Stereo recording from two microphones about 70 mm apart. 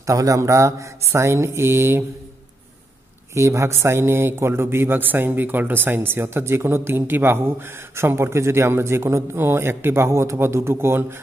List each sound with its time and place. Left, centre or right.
0.0 s speech: right
3.3 s speech: right